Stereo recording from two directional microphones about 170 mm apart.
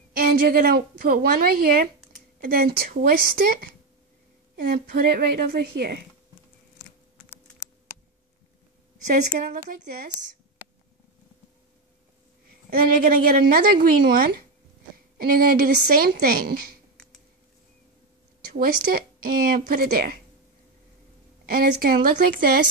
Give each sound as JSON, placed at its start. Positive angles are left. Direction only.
{"t": 0.1, "sound": "a woman's voice", "side_deg": -60}
{"t": 9.0, "sound": "a woman's voice", "side_deg": -50}
{"t": 12.6, "sound": "a woman's voice", "side_deg": -55}
{"t": 18.5, "sound": "a woman's voice", "side_deg": -55}
{"t": 21.5, "sound": "a woman's voice", "side_deg": -55}